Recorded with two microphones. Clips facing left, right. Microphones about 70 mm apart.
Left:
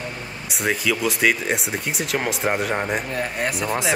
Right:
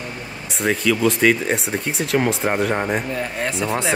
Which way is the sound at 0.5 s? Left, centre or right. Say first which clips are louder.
Right 3 dB; centre.